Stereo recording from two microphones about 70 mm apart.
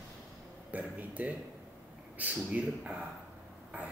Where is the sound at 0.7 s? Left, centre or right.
Right.